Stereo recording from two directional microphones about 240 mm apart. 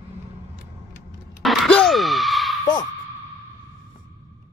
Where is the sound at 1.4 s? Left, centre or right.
Centre.